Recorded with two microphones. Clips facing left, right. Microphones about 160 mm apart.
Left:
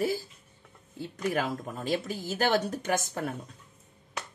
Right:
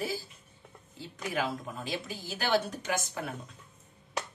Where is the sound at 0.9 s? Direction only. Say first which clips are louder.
Left 4 dB; 50° left (ahead or behind).